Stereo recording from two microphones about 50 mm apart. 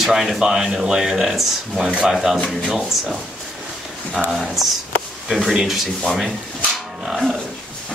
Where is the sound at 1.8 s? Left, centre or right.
Centre.